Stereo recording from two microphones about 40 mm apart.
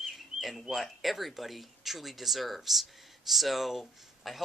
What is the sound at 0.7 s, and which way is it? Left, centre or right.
Speech, centre.